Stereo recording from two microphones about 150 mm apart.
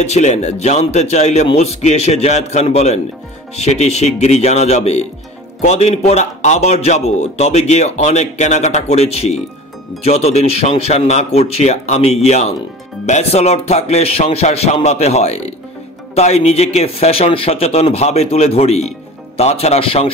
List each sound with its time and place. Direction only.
0.0 s a man's voice: 50° left (ahead or behind)